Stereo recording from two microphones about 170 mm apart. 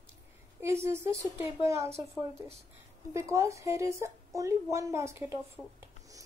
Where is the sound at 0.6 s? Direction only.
15° right (ahead or behind).